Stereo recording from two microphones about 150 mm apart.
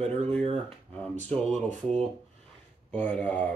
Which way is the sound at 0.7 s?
5° left (ahead or behind).